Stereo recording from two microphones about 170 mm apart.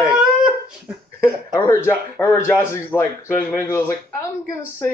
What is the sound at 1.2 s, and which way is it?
Speech, 15° left (ahead or behind).